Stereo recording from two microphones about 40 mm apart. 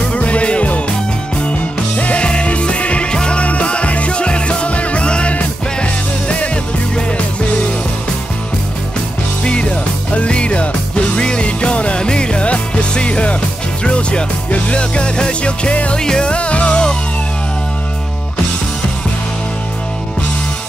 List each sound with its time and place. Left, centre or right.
0.1 s music: left
2.0 s music: left
9.4 s music: left
16.0 s music: centre